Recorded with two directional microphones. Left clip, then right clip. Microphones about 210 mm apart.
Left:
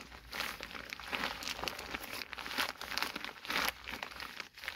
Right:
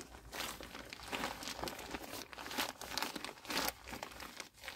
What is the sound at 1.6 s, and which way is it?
Crumpling, 5° left (ahead or behind).